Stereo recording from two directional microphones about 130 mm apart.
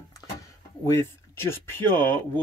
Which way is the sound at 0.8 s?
20° left (ahead or behind).